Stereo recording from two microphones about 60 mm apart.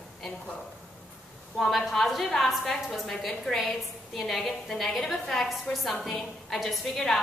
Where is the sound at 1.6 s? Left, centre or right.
Centre.